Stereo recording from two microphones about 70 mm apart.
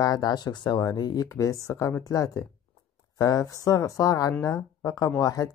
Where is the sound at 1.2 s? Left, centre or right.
Left.